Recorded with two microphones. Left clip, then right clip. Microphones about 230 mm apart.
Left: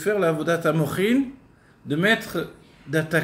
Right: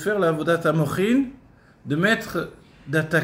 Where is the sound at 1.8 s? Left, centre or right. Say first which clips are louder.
Even; centre.